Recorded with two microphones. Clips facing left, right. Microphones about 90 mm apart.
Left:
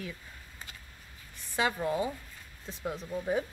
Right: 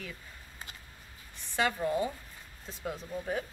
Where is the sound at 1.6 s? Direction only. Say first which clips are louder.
Even; 10° left (ahead or behind).